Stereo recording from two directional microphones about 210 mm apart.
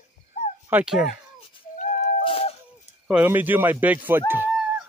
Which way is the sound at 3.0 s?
5° right (ahead or behind).